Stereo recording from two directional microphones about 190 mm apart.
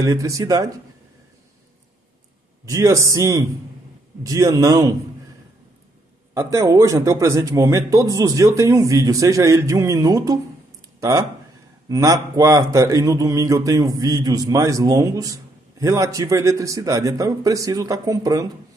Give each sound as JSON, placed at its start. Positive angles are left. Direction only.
{"t": 0.0, "sound": "speech", "side_deg": -15}
{"t": 2.6, "sound": "a man's voice", "side_deg": -15}
{"t": 6.3, "sound": "speech", "side_deg": -15}